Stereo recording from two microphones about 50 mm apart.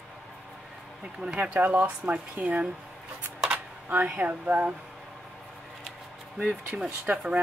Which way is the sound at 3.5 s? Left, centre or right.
Right.